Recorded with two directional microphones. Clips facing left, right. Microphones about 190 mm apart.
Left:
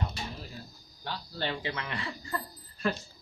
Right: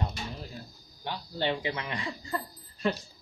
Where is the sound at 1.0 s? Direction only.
15° right (ahead or behind).